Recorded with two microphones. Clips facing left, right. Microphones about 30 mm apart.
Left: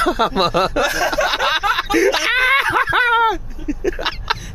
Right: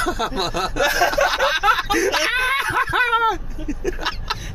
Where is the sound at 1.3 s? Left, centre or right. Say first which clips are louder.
Even; centre.